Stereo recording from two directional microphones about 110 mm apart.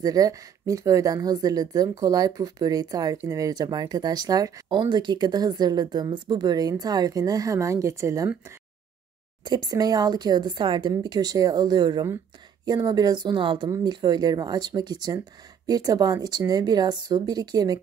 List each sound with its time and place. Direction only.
0.0 s speech: 35° right (ahead or behind)
9.4 s speech: 40° right (ahead or behind)